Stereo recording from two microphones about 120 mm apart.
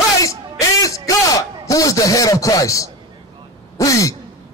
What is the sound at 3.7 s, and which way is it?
Throat clearing, 25° left (ahead or behind).